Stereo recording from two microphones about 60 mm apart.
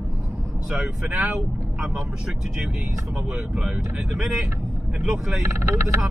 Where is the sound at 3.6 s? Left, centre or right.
Centre.